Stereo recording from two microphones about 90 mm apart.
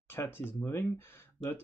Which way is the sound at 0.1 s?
25° left (ahead or behind).